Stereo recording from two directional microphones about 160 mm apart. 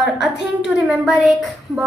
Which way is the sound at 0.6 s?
5° right (ahead or behind).